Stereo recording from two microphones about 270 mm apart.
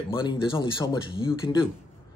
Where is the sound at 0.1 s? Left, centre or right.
Centre.